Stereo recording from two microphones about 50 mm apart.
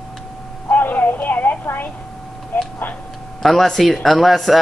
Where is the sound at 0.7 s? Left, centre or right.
Left.